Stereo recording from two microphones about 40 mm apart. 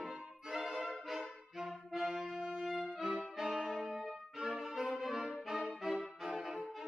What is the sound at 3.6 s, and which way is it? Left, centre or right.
Music, centre.